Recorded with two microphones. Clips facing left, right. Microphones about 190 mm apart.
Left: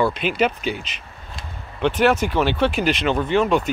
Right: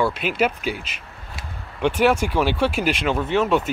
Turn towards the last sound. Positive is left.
turn(degrees=-5)  # may be behind; listen again after turning